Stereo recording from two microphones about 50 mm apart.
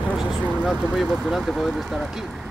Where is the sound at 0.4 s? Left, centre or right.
Left.